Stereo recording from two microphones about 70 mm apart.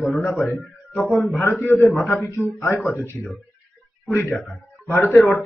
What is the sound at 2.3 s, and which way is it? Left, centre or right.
Speech, left.